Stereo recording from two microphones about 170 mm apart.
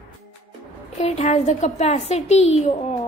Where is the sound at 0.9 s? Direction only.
40° left (ahead or behind).